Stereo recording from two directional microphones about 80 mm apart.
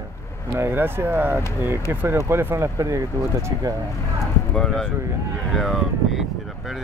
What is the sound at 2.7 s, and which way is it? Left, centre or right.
Speech, right.